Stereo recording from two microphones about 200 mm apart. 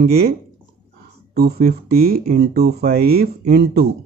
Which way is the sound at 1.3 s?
50° right (ahead or behind).